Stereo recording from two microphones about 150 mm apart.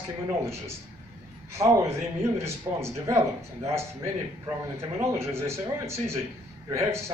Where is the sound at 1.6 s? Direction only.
20° right (ahead or behind).